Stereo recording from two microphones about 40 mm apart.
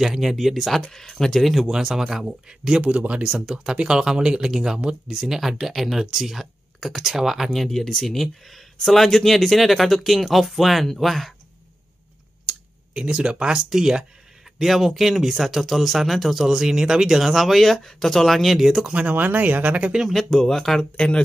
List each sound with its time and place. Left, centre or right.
0.0 s speech: centre
0.8 s speech: centre
1.7 s speech: centre
3.3 s speech: centre
7.6 s speech: centre
12.4 s clicking: right
13.7 s speech: centre
18.9 s speech: right
19.1 s speech: right
20.1 s speech: centre
20.9 s speech: left